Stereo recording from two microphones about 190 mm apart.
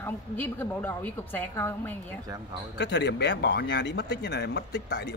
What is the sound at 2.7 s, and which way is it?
Speech, 65° left (ahead or behind).